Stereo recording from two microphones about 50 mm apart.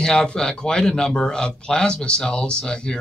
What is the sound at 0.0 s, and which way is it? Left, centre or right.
Speech, centre.